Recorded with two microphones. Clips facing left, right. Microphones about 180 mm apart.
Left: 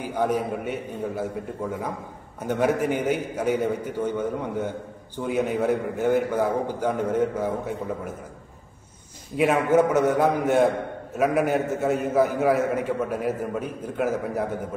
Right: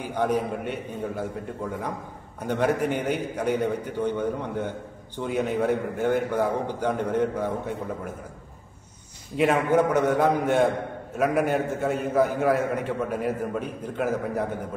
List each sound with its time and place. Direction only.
0.0 s a man's voice: 5° left (ahead or behind)
9.4 s a man's voice: 5° left (ahead or behind)